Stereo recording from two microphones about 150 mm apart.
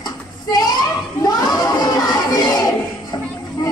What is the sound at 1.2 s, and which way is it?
Crowd, 25° left (ahead or behind).